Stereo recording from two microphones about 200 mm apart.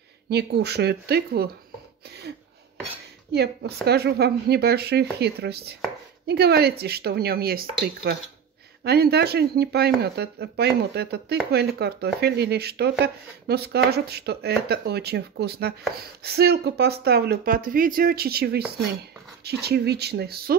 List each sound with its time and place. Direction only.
0.3 s speech: 55° right (ahead or behind)
2.0 s a sound: 55° right (ahead or behind)
3.8 s speech: 55° right (ahead or behind)
19.6 s speech: 55° right (ahead or behind)